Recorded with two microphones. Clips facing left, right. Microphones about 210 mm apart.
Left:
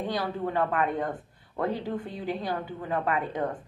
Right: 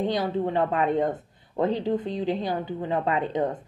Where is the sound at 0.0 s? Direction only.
20° right (ahead or behind).